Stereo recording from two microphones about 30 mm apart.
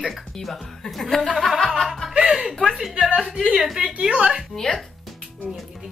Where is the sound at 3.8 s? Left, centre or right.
Right.